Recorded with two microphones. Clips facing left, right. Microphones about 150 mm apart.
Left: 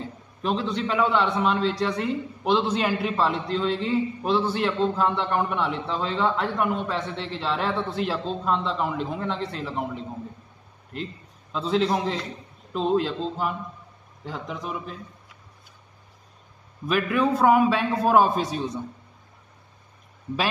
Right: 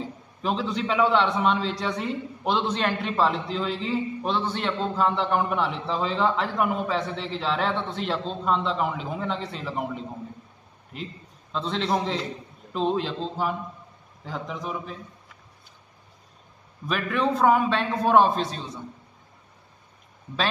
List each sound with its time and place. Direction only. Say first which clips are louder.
0.0 s a man's voice: even; centre (ahead or behind)
16.8 s a man's voice: left 3 dB; 5° left (ahead or behind)